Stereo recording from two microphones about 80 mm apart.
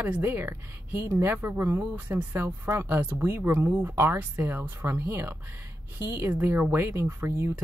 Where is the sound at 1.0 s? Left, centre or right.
Right.